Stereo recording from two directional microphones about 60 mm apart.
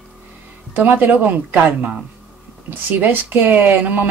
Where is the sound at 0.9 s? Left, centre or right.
Right.